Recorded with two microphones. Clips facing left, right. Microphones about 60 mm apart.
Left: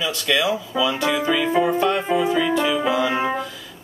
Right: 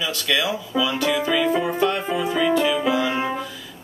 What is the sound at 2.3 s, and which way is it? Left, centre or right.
Music, centre.